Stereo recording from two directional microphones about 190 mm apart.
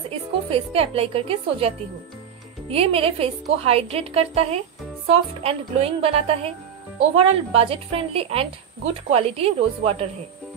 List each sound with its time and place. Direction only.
0.5 s speech: 30° right (ahead or behind)